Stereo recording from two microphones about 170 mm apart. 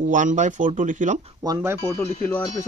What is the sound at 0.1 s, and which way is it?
Speech, 45° right (ahead or behind).